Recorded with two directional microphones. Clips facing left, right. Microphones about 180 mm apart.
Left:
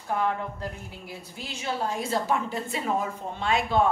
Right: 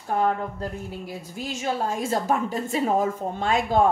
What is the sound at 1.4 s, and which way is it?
A woman's voice, 45° right (ahead or behind).